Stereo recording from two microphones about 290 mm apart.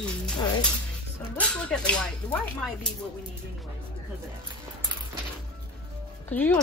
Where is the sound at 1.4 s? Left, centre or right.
Centre.